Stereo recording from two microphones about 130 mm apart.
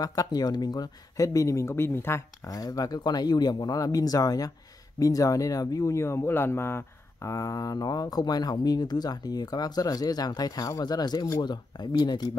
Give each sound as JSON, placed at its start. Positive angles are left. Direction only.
{"t": 0.0, "sound": "speech", "side_deg": 30}